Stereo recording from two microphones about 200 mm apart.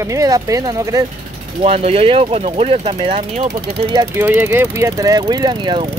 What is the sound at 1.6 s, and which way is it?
Speech, 30° right (ahead or behind).